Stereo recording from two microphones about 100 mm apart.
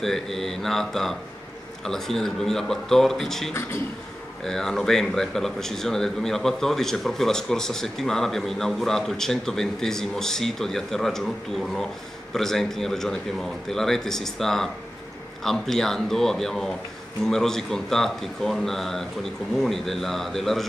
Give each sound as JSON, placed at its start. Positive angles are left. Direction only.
{"t": 0.0, "sound": "speech", "side_deg": 5}